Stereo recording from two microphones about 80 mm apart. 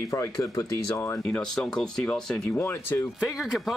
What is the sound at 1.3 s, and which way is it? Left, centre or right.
Speech, centre.